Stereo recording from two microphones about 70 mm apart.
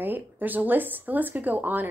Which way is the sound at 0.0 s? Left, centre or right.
Right.